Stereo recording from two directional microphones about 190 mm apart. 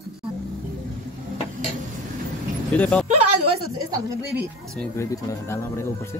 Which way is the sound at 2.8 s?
5° left (ahead or behind).